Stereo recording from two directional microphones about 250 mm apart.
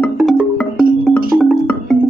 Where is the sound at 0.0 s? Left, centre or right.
Centre.